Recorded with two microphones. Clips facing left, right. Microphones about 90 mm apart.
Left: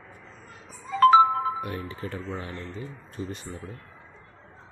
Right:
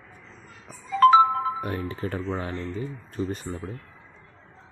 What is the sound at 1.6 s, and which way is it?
Speech, 40° right (ahead or behind).